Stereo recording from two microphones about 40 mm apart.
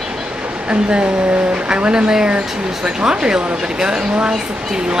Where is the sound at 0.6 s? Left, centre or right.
Right.